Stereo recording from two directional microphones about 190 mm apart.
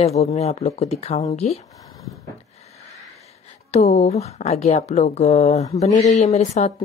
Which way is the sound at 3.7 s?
35° left (ahead or behind).